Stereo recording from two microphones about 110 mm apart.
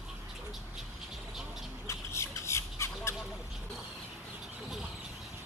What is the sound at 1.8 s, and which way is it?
Squawk, 25° left (ahead or behind).